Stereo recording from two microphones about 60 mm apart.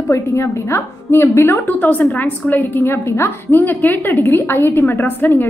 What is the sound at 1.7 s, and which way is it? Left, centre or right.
A woman's voice, left.